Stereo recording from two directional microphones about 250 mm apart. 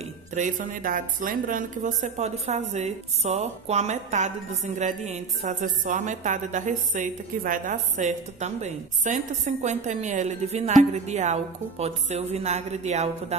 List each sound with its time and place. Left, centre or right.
0.3 s a woman's voice: right